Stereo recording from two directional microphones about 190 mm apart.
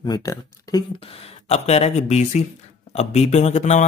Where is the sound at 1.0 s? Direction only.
30° left (ahead or behind).